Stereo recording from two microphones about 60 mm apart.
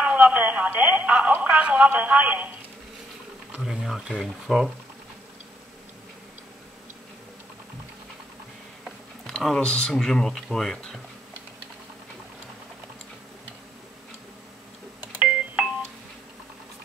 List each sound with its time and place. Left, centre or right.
0.0 s speech: right
3.8 s speech: centre
8.8 s a sound: centre
9.6 s speech: centre
15.1 s doorbell: right